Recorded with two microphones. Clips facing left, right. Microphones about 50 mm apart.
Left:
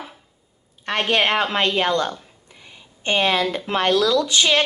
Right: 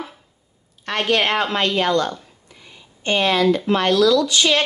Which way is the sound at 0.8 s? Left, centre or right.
Centre.